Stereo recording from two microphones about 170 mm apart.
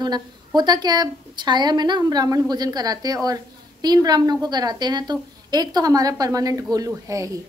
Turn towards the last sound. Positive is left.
turn(degrees=-20)  # may be behind; listen again after turning